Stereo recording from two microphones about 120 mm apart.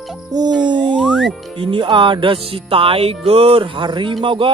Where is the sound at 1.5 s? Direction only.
45° right (ahead or behind).